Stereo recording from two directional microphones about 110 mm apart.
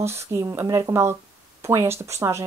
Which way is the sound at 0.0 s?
25° right (ahead or behind).